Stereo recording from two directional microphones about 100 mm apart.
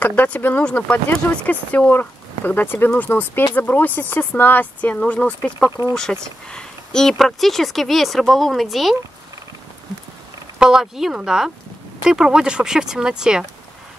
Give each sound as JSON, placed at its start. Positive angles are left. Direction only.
{"t": 0.0, "sound": "speech", "side_deg": 15}
{"t": 10.6, "sound": "speech", "side_deg": -5}